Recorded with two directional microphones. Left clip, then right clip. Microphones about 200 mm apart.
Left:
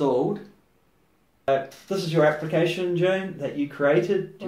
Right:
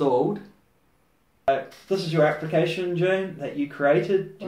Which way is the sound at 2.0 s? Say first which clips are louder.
Left 2 dB; 20° left (ahead or behind).